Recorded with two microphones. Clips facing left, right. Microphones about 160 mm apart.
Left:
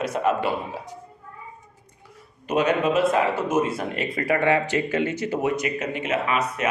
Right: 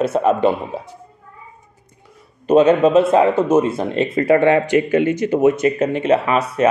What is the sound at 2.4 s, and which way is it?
Speech, 30° right (ahead or behind).